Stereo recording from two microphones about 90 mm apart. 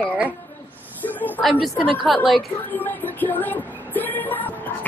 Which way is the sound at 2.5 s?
20° left (ahead or behind).